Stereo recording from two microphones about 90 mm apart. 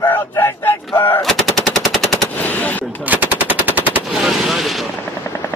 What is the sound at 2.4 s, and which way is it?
Gunshot, 20° left (ahead or behind).